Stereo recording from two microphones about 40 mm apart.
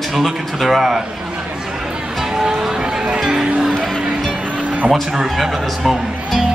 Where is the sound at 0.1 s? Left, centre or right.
Centre.